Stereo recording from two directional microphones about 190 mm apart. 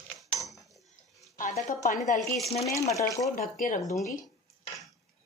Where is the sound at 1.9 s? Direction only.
40° left (ahead or behind).